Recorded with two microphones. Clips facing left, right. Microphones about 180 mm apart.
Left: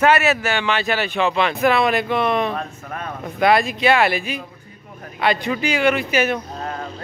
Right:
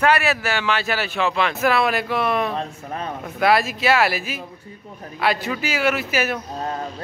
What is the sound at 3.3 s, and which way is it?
Speech, 5° right (ahead or behind).